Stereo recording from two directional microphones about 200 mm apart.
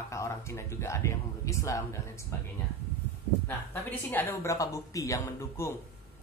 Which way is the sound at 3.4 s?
10° left (ahead or behind).